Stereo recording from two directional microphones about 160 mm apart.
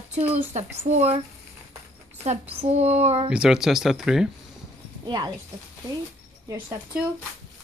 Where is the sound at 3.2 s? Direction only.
5° right (ahead or behind).